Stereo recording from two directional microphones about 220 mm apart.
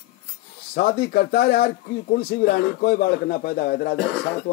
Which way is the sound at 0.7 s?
45° left (ahead or behind).